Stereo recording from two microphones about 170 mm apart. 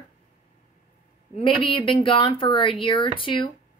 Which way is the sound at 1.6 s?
30° left (ahead or behind).